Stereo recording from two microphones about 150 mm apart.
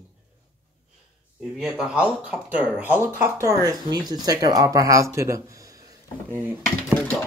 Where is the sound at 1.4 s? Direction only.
5° right (ahead or behind); by 6.4 s 25° right (ahead or behind).